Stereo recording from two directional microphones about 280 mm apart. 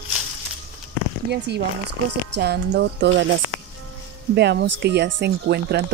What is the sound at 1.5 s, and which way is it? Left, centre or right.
Speech, right.